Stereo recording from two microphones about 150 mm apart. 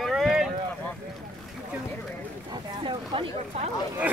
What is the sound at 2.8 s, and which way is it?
Speech, 35° right (ahead or behind).